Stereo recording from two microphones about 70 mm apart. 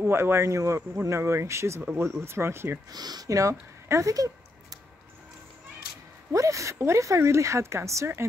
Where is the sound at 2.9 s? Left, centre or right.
Right.